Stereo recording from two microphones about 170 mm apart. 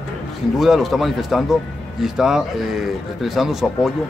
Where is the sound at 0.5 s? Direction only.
Centre (ahead or behind).